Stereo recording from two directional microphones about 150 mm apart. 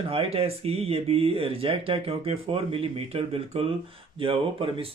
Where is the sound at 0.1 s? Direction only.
40° right (ahead or behind).